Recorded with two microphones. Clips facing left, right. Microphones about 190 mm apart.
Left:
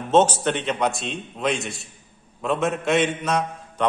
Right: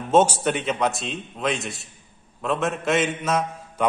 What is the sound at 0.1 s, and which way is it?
A man's voice, 10° right (ahead or behind).